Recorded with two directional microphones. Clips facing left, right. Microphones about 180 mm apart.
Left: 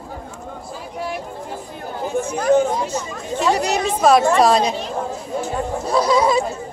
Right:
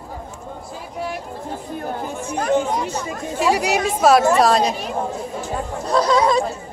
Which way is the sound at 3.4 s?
10° right (ahead or behind).